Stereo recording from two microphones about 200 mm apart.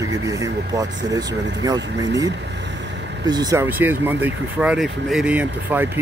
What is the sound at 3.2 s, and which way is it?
Speech, 20° right (ahead or behind).